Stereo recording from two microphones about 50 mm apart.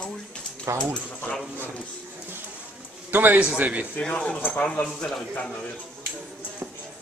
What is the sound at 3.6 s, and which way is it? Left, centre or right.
Speech, right.